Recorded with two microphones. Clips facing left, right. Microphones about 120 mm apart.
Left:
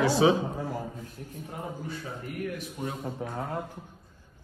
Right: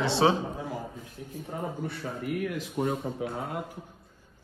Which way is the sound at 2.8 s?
45° right (ahead or behind).